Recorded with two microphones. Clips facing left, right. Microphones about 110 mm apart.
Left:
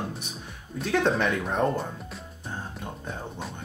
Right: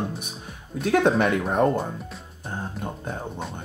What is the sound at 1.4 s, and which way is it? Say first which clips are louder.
Speech: right 4 dB; 10° right (ahead or behind).